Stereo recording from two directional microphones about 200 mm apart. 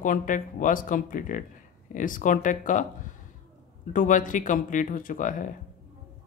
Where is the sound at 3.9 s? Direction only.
40° left (ahead or behind).